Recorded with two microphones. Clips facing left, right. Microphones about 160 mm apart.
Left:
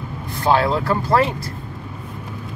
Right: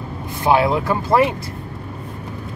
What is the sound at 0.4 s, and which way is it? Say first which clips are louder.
Speech: right 1 dB; 15° right (ahead or behind).